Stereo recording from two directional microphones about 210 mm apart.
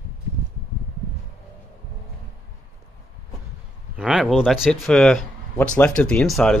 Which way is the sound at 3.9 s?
5° right (ahead or behind).